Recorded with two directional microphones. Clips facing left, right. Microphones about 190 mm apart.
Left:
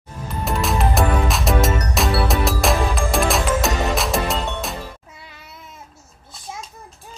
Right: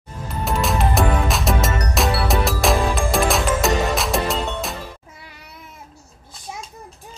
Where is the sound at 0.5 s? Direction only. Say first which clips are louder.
Even; centre (ahead or behind).